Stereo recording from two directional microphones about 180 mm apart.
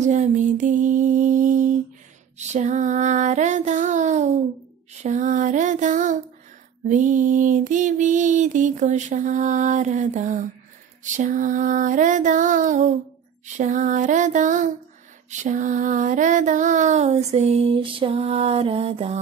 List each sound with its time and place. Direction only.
0.0 s music: 40° right (ahead or behind)
2.3 s female singing: 40° right (ahead or behind)
5.0 s a sound: 45° right (ahead or behind)
15.2 s female singing: 45° right (ahead or behind)